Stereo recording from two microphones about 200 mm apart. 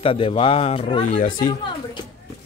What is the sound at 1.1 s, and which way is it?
Speech, 40° left (ahead or behind).